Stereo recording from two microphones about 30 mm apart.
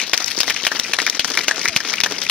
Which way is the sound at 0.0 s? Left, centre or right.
Left.